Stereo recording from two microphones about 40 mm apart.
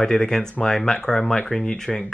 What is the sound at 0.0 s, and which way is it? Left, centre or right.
Speech, centre.